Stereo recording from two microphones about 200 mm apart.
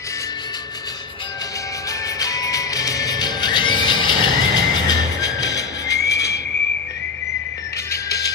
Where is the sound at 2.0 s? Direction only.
15° left (ahead or behind).